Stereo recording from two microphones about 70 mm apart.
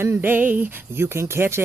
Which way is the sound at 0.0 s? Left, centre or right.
Right.